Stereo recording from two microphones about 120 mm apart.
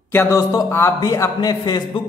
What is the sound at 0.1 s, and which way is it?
A man's voice, 25° left (ahead or behind).